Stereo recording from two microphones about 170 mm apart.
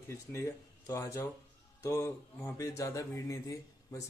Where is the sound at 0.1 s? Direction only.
15° left (ahead or behind).